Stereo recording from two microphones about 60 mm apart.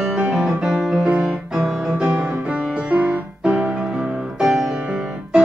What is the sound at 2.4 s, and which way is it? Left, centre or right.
Music, centre.